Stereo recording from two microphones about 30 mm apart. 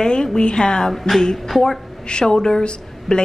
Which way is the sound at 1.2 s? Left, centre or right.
Centre.